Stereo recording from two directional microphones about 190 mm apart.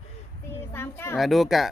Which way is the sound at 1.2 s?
Centre (ahead or behind).